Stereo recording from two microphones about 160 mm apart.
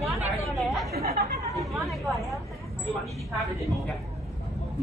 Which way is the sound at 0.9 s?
75° right (ahead or behind).